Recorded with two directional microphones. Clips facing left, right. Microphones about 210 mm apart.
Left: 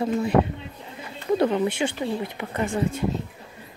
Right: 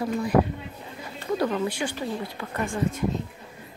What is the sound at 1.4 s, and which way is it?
Speech, 25° left (ahead or behind).